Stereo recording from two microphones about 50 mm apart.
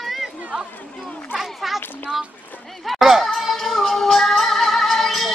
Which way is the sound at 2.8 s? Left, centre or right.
Centre.